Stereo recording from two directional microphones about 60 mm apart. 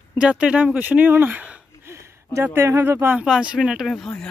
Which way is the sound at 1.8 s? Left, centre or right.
Right.